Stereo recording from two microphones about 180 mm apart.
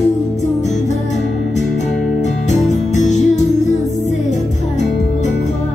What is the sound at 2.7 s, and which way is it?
Music, 40° left (ahead or behind).